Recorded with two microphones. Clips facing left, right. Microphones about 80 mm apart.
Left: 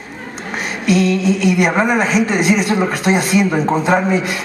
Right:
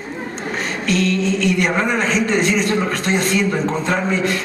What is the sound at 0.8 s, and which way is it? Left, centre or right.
A woman's voice, centre.